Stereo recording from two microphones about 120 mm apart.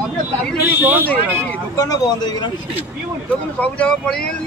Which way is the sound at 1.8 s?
30° left (ahead or behind).